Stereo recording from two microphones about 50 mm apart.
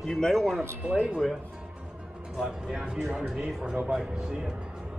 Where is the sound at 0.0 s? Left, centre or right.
Centre.